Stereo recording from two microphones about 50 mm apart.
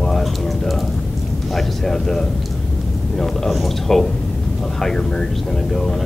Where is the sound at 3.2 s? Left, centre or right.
Centre.